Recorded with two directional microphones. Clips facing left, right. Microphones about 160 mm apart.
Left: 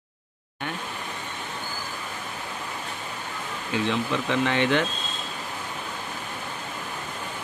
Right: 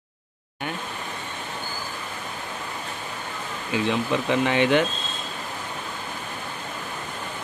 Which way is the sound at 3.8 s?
15° right (ahead or behind).